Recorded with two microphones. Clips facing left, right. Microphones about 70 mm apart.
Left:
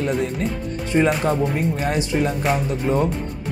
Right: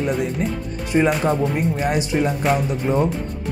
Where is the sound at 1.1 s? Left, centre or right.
Centre.